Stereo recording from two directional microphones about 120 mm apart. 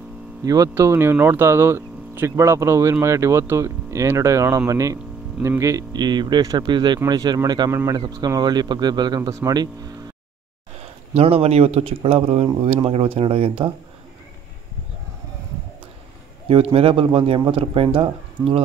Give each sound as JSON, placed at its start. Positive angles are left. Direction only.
{"t": 0.5, "sound": "a man's voice", "side_deg": -25}
{"t": 11.1, "sound": "speech", "side_deg": -55}
{"t": 16.4, "sound": "speech", "side_deg": -50}